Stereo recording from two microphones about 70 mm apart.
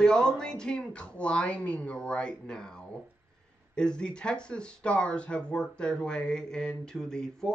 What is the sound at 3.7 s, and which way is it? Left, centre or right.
Speech, centre.